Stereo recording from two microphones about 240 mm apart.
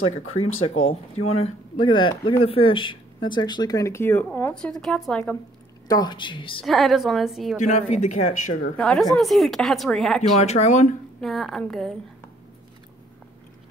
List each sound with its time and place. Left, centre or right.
0.4 s speech: left
0.8 s speech: left; by 5.4 s centre
5.9 s speech: centre
6.6 s speech: centre
7.6 s speech: left
8.7 s speech: centre
10.4 s speech: left
11.1 s speech: centre